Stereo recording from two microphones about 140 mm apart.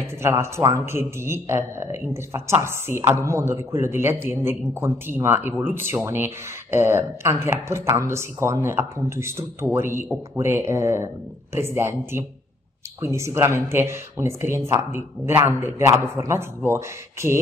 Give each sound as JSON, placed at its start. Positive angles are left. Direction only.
{"t": 0.0, "sound": "a man's voice", "side_deg": -20}